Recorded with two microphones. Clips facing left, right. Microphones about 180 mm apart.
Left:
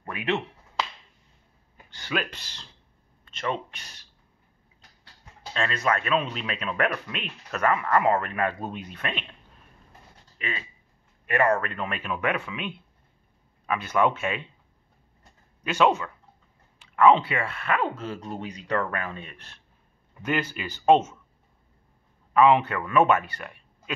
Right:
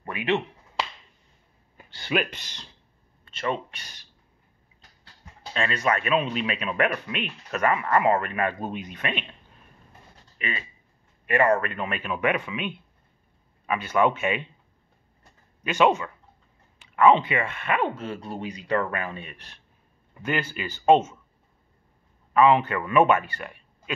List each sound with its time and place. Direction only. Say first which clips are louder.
0.0 s finger snapping: right 2 dB; centre (ahead or behind)
2.0 s speech: right 4 dB; 20° right (ahead or behind)
5.5 s speech: right 1 dB; 5° right (ahead or behind)
8.7 s speech: right 2 dB; 10° right (ahead or behind)
10.3 s speech: right 1 dB; 5° right (ahead or behind)
15.6 s speech: right 1 dB; 10° right (ahead or behind)
17.3 s speech: right 1 dB; 10° right (ahead or behind)
22.3 s speech: even; 5° left (ahead or behind)